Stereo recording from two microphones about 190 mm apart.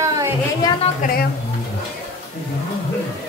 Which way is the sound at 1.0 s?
45° left (ahead or behind).